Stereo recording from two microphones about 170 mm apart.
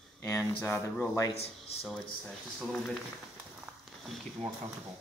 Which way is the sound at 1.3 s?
40° left (ahead or behind).